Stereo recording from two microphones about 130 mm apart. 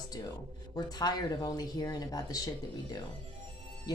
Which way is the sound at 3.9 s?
30° left (ahead or behind).